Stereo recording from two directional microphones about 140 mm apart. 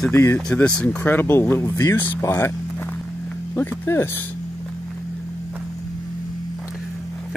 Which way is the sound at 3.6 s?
15° left (ahead or behind).